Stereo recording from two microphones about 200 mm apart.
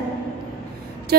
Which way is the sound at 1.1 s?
50° right (ahead or behind).